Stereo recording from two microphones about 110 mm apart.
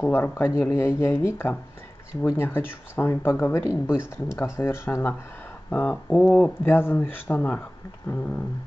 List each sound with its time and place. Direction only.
0.0 s speech: 20° left (ahead or behind)
6.6 s speech: 20° left (ahead or behind)